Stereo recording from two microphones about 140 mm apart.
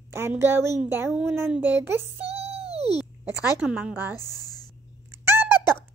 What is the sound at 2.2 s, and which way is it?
Child singing, 45° right (ahead or behind).